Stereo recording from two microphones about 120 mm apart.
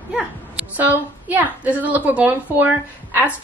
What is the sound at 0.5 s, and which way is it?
A woman's voice, 15° right (ahead or behind).